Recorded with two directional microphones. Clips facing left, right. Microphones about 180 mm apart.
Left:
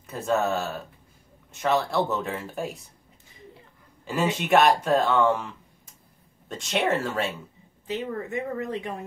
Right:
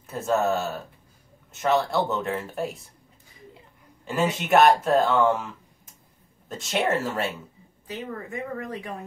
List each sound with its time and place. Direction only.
0.0 s speech: centre (ahead or behind)
4.0 s speech: centre (ahead or behind)
6.5 s speech: 5° right (ahead or behind)
7.8 s speech: 25° left (ahead or behind)